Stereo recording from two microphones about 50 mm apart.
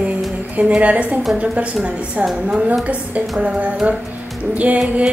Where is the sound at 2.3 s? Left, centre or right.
Centre.